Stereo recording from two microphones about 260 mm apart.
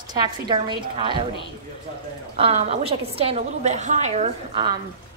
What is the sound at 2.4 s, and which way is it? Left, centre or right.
A woman's voice, right.